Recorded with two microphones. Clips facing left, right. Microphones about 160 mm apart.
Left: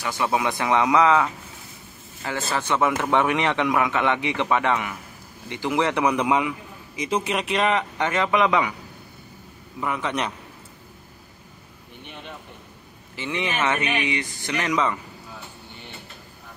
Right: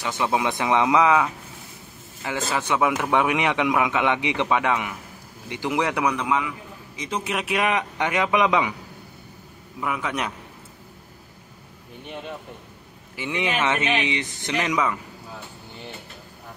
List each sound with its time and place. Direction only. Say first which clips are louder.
0.0 s a man's voice: even; 20° right (ahead or behind)
2.2 s a man's voice: right 1 dB; 15° right (ahead or behind)
6.1 s a man's voice: left 3 dB; 20° left (ahead or behind)
7.0 s a man's voice: left 3 dB; centre (ahead or behind); by 8.7 s 15° right (ahead or behind)
9.8 s a man's voice: left 1 dB; 5° right (ahead or behind)
13.1 s a man's voice: right 1 dB; 15° right (ahead or behind)